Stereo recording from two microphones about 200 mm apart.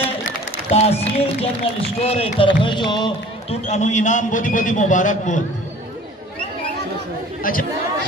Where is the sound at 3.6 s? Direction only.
35° left (ahead or behind).